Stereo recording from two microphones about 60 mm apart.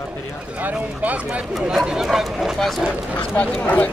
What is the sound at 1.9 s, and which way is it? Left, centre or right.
Speech, centre.